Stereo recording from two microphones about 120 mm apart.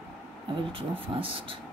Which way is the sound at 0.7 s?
50° right (ahead or behind).